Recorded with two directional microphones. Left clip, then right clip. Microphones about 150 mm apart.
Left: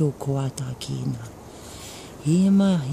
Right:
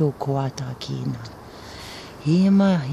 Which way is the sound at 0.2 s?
45° left (ahead or behind).